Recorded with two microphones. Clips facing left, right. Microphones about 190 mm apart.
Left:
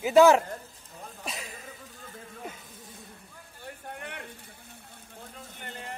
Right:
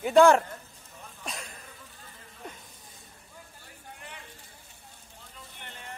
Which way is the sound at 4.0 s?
60° left (ahead or behind).